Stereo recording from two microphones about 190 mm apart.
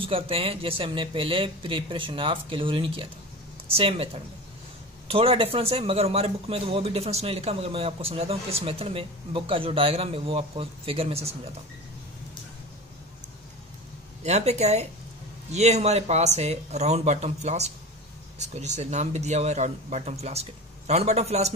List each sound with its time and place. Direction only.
0.0 s a man's voice: 30° right (ahead or behind)
14.2 s a man's voice: 35° right (ahead or behind)